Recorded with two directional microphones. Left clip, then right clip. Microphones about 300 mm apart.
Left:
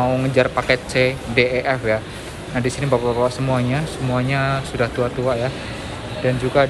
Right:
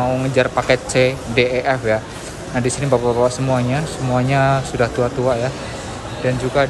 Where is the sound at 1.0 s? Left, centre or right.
Right.